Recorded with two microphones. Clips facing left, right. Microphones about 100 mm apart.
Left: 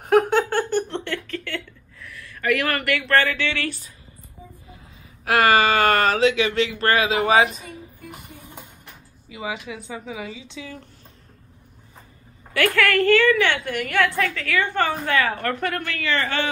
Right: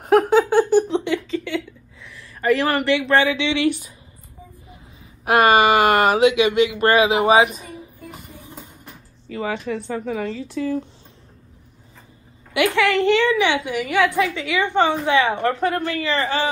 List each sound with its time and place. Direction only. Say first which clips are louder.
0.0 s a sound: right 3 dB; centre (ahead or behind); by 3.9 s 15° right (ahead or behind)
5.2 s speech: right 3 dB; 20° right (ahead or behind)
9.3 s speech: right 6 dB; 5° left (ahead or behind)
12.5 s a woman's voice: right 2 dB; 15° right (ahead or behind)